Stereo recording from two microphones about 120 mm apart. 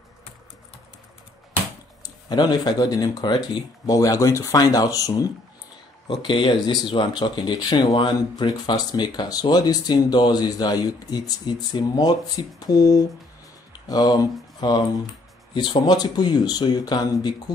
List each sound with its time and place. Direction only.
2.0 s speech: 35° left (ahead or behind)
6.0 s speech: 40° left (ahead or behind)